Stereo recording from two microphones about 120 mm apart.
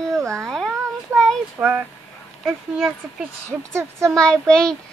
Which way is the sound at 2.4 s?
5° right (ahead or behind).